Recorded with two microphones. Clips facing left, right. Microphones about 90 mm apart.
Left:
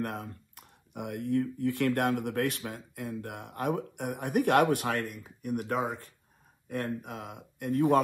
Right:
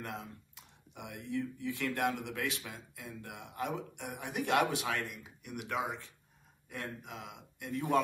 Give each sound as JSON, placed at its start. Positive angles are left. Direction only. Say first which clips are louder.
{"t": 0.0, "sound": "speech", "louder": "left 7 dB", "side_deg": 55}